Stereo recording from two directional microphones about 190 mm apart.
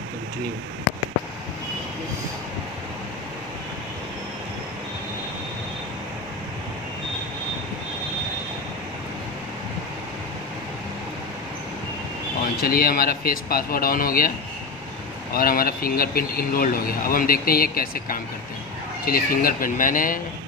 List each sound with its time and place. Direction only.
12.5 s speech: 50° left (ahead or behind)
15.3 s speech: 50° left (ahead or behind)